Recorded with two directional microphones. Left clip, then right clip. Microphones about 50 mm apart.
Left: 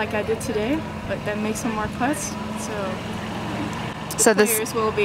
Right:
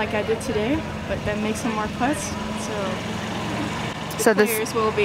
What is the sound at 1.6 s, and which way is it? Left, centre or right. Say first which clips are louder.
Speech: right 1 dB; right.